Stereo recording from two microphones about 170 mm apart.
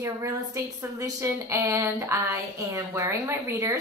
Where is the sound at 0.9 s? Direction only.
20° right (ahead or behind).